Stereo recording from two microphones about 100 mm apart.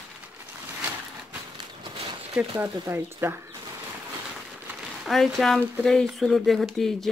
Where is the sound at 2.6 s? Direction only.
25° right (ahead or behind).